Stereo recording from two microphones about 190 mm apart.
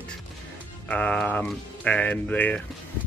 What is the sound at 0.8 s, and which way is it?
Speech, 5° left (ahead or behind).